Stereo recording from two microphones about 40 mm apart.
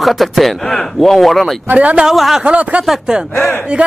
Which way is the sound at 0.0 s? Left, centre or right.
Centre.